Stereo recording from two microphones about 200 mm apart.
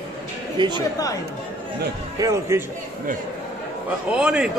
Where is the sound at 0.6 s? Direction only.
20° right (ahead or behind).